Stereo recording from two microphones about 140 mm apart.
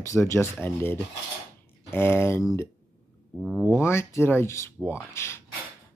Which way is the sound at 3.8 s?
20° left (ahead or behind).